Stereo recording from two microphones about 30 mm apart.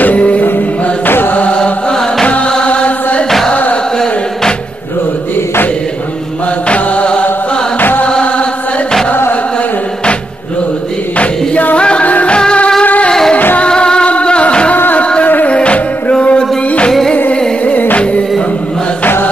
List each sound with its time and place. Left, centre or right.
2.2 s chant: left
6.7 s mantra: left
11.7 s music: left
12.0 s music: left
13.7 s music: left
14.7 s music: left
15.5 s music: left